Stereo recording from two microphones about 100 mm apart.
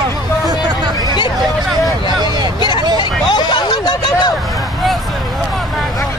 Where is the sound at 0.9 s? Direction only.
50° left (ahead or behind).